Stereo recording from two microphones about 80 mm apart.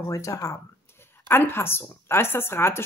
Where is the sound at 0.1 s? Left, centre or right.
Left.